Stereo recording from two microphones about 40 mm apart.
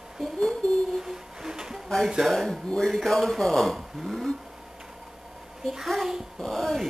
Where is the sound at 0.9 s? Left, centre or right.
Centre.